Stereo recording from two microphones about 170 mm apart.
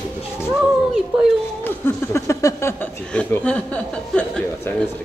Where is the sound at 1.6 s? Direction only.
10° left (ahead or behind).